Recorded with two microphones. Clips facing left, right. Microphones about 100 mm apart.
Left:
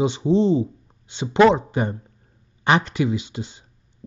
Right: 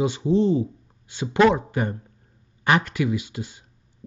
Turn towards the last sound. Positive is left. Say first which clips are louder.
# left 1 dB
turn(degrees=25)  # may be behind; listen again after turning